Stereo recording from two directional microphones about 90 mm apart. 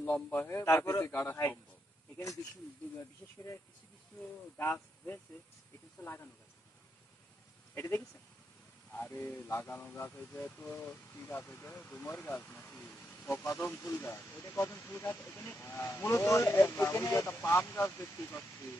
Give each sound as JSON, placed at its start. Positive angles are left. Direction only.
{"t": 0.0, "sound": "speech", "side_deg": 20}
{"t": 4.7, "sound": "speech", "side_deg": 20}
{"t": 7.7, "sound": "speech", "side_deg": 30}
{"t": 11.8, "sound": "speech", "side_deg": 15}
{"t": 12.6, "sound": "vehicle", "side_deg": 10}
{"t": 12.9, "sound": "speech", "side_deg": 25}